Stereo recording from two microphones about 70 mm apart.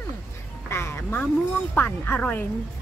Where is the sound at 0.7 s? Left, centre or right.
Left.